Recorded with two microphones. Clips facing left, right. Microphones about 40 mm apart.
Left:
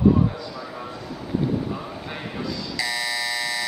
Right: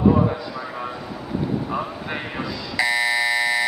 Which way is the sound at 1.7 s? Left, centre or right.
Right.